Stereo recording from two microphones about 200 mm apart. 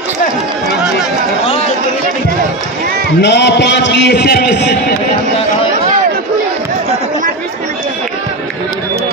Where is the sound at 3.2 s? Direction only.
60° left (ahead or behind).